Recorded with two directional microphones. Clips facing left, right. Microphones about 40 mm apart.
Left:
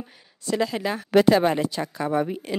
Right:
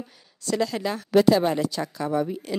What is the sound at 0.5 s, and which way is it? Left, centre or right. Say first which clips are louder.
Speech: left 1 dB; centre.